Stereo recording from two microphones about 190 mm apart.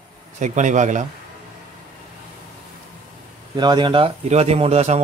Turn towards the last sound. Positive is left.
turn(degrees=-35)  # may be behind; listen again after turning